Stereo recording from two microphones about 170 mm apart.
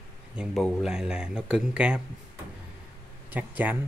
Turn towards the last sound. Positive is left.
turn(degrees=-10)  # may be behind; listen again after turning